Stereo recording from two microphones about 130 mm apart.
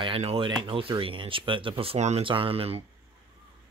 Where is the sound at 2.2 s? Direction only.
40° right (ahead or behind).